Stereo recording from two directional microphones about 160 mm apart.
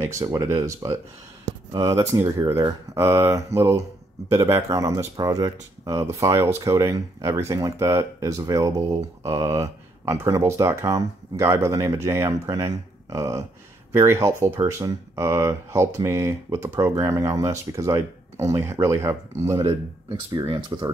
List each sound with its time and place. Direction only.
0.0 s speech: 20° right (ahead or behind)